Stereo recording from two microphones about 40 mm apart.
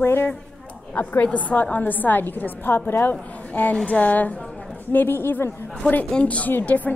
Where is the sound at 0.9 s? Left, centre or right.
Left.